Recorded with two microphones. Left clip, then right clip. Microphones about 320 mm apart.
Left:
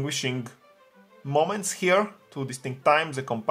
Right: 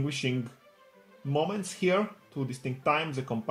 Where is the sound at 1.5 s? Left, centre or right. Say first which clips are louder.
Left 5 dB; left.